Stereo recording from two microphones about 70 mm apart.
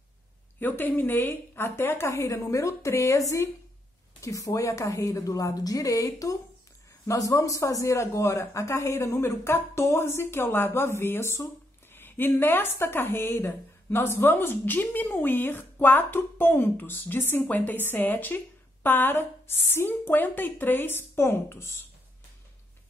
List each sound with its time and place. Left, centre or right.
0.6 s a woman's voice: left
11.9 s speech: left